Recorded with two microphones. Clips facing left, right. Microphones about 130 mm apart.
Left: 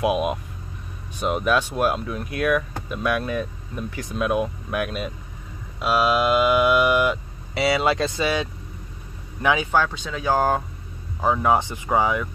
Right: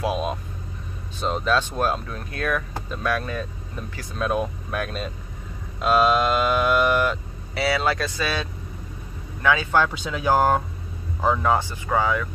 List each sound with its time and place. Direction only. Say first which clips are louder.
0.0 s moo: left 3 dB; 15° left (ahead or behind)
9.8 s speech: right 1 dB; 5° right (ahead or behind)
11.2 s moo: left 1 dB; 10° left (ahead or behind)